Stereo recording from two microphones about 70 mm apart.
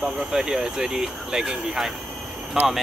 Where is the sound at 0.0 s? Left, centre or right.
Centre.